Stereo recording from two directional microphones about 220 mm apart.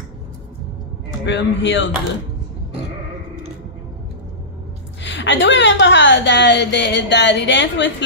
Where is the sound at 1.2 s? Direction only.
55° left (ahead or behind).